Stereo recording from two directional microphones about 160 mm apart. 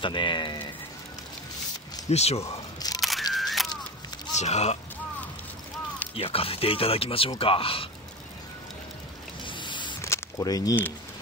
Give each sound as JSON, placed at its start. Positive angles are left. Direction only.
{"t": 0.0, "sound": "speech", "side_deg": 30}
{"t": 2.0, "sound": "speech", "side_deg": 40}
{"t": 3.0, "sound": "single-lens reflex camera", "side_deg": 0}
{"t": 4.4, "sound": "speech", "side_deg": 45}
{"t": 6.1, "sound": "speech", "side_deg": 35}
{"t": 9.4, "sound": "a sound", "side_deg": 30}